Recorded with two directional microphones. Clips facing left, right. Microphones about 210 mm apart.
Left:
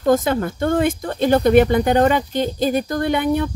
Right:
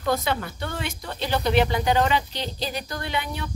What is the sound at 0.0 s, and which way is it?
A woman's voice, 45° left (ahead or behind).